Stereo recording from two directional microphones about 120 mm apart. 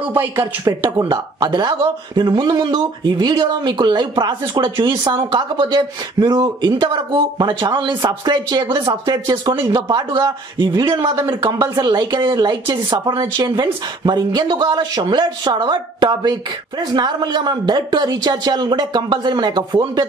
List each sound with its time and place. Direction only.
0.0 s speech: 20° right (ahead or behind)
1.0 s a woman's voice: 40° right (ahead or behind)